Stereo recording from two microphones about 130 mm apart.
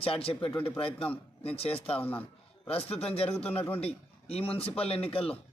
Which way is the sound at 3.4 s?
15° left (ahead or behind).